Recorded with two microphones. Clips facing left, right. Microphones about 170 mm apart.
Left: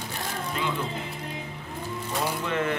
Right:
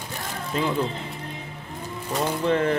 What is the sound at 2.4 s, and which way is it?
Speech, 35° right (ahead or behind).